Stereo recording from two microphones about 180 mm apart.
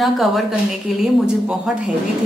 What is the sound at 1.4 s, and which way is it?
Speech, 5° right (ahead or behind).